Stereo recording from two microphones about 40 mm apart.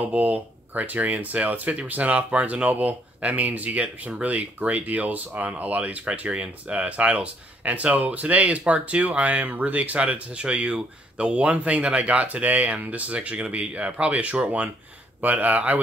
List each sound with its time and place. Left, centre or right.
0.0 s speech: right